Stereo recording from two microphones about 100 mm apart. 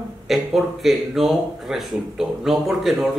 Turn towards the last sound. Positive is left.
turn(degrees=0)  # may be behind; listen again after turning